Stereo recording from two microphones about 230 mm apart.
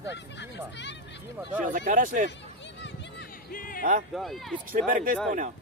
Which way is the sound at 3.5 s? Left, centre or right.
Left.